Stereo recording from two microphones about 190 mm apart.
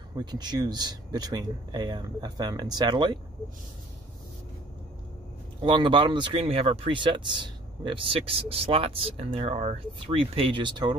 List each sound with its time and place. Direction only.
0.2 s speech: 20° right (ahead or behind)
5.6 s speech: 25° right (ahead or behind)